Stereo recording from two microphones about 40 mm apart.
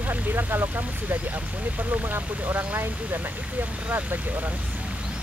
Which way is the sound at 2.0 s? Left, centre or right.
Right.